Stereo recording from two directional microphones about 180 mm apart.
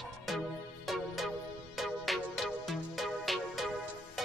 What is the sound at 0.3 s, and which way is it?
Music, centre (ahead or behind).